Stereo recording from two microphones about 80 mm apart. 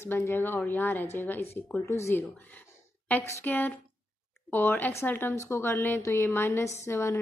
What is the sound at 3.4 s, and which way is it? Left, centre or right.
A woman's voice, left.